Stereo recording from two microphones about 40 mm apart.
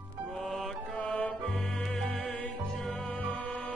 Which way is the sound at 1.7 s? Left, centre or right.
Centre.